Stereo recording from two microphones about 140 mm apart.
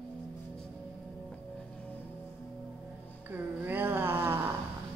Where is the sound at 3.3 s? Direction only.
15° right (ahead or behind).